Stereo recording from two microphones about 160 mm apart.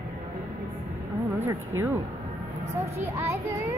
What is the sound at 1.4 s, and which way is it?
Speech, 15° right (ahead or behind).